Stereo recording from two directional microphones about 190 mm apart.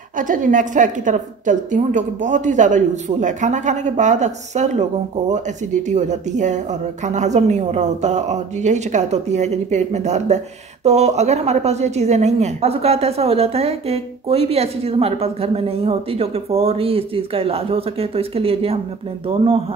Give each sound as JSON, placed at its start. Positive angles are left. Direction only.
{"t": 0.3, "sound": "speech", "side_deg": -40}